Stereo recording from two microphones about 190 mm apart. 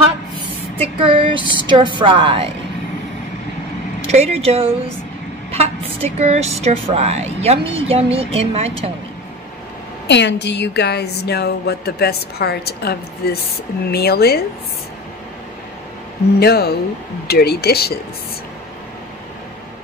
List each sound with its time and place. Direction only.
1.0 s a woman's voice: 25° right (ahead or behind)
4.1 s speech: 35° right (ahead or behind)
10.0 s a woman's voice: 65° left (ahead or behind)
16.3 s a woman's voice: 55° left (ahead or behind)